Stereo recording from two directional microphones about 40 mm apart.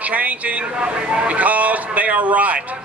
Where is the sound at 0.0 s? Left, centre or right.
Right.